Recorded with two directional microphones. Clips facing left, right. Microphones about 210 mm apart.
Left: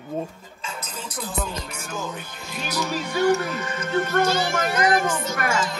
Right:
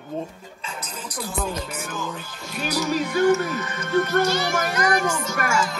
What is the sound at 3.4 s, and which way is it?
Speech, 30° left (ahead or behind).